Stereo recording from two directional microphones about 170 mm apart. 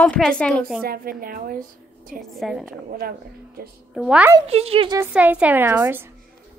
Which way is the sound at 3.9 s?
5° right (ahead or behind).